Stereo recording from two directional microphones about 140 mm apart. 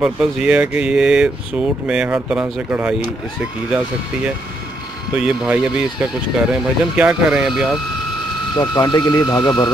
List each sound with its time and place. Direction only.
0.0 s speech: 5° right (ahead or behind)
5.1 s speech: 5° right (ahead or behind)
8.5 s speech: 30° left (ahead or behind)